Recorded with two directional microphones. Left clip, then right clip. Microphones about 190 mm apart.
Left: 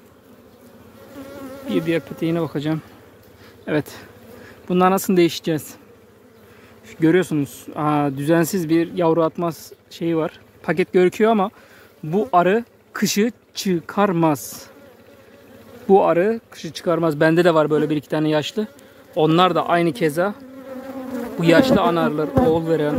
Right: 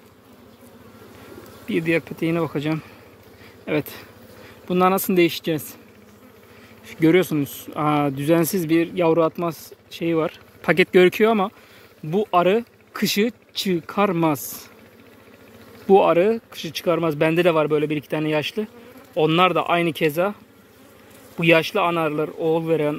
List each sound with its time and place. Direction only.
1.7 s speech: 20° left (ahead or behind)
6.9 s speech: 15° left (ahead or behind)
10.6 s speech: 5° left (ahead or behind); by 14.7 s 25° left (ahead or behind)
15.9 s speech: 15° left (ahead or behind)
21.4 s speech: 25° left (ahead or behind)